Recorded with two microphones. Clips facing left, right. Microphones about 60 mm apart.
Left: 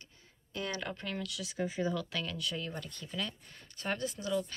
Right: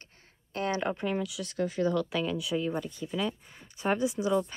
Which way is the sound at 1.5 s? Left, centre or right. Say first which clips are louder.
Right 5 dB; centre.